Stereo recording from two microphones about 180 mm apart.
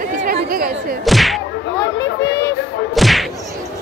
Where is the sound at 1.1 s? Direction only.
Centre (ahead or behind).